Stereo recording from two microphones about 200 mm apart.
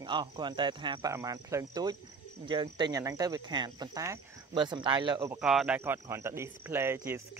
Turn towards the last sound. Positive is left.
turn(degrees=-10)  # may be behind; listen again after turning